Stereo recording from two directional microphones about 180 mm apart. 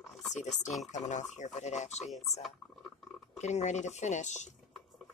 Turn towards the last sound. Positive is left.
turn(degrees=40)  # may be behind; listen again after turning